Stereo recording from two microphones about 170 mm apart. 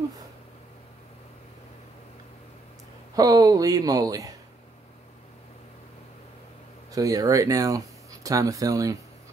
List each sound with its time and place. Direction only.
3.2 s speech: 20° right (ahead or behind)
6.9 s speech: 20° right (ahead or behind)